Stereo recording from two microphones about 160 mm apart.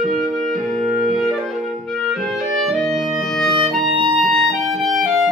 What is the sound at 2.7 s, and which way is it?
Music, centre (ahead or behind).